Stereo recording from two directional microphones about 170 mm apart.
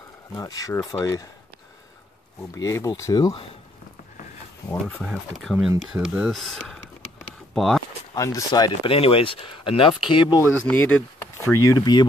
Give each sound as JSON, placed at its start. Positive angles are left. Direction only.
{"t": 0.4, "sound": "speech", "side_deg": 20}
{"t": 2.5, "sound": "speech", "side_deg": 20}
{"t": 4.6, "sound": "speech", "side_deg": 5}
{"t": 8.1, "sound": "speech", "side_deg": 20}
{"t": 10.7, "sound": "speech", "side_deg": 10}